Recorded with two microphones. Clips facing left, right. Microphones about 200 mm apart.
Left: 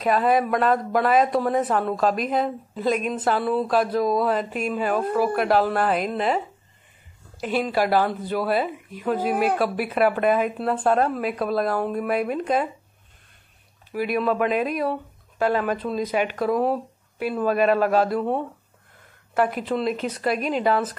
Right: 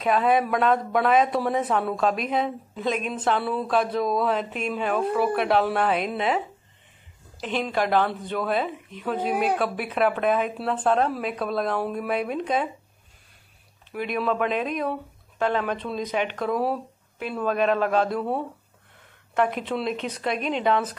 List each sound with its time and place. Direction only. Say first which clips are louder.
0.0 s a woman's voice: left 1 dB; centre (ahead or behind)
13.9 s a woman's voice: left 3 dB; 5° left (ahead or behind)
19.3 s a woman's voice: left 2 dB; 5° left (ahead or behind)